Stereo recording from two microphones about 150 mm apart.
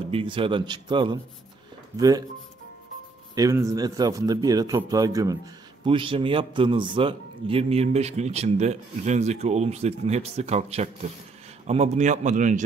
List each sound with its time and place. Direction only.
0.1 s a man's voice: 35° right (ahead or behind)
3.3 s a man's voice: 20° right (ahead or behind)
5.9 s a man's voice: 35° right (ahead or behind); by 12.6 s 55° right (ahead or behind)